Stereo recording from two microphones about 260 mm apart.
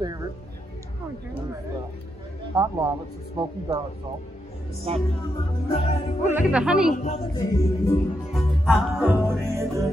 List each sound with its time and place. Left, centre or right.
2.5 s music: centre
4.9 s music: right
5.7 s music: left
6.3 s speech: centre
7.3 s speech: centre
8.3 s music: centre